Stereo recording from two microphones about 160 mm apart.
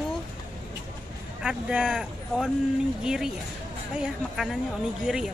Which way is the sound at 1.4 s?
5° right (ahead or behind).